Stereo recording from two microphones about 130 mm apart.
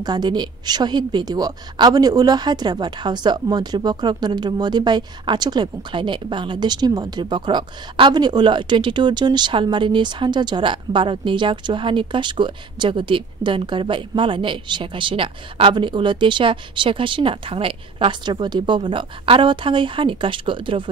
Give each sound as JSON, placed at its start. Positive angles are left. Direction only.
{"t": 0.0, "sound": "a woman's voice", "side_deg": -35}